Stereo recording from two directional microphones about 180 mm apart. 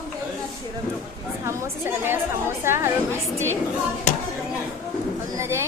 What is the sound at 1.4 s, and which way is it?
A woman's voice, 15° right (ahead or behind).